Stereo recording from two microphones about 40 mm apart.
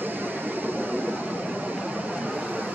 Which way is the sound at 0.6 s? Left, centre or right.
Right.